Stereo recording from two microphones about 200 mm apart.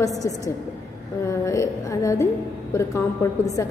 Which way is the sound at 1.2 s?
15° left (ahead or behind).